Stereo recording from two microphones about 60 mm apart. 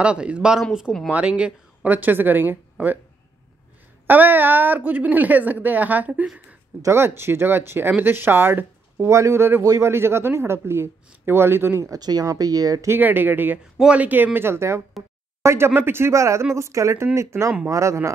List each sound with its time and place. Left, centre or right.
0.0 s speech: centre; by 3.0 s right
4.1 s a woman's voice: right
6.9 s speech: right
11.8 s speech: right
13.0 s speech: right